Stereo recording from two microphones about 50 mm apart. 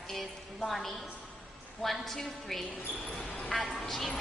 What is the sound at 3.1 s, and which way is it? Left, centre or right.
Speech, left.